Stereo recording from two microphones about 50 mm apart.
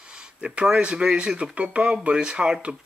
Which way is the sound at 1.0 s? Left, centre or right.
Centre.